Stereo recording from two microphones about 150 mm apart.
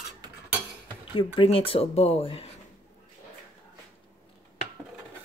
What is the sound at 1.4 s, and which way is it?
Speech, 40° left (ahead or behind).